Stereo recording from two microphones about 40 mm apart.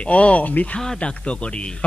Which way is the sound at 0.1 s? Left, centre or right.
Left.